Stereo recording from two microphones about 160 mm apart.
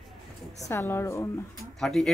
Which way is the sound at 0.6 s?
15° left (ahead or behind).